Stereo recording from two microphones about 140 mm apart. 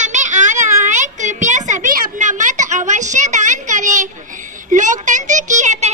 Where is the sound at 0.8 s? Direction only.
60° right (ahead or behind).